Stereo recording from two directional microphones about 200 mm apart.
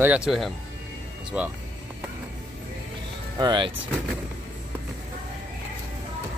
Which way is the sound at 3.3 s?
20° right (ahead or behind).